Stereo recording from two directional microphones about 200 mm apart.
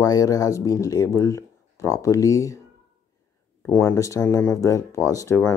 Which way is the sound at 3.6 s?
10° left (ahead or behind).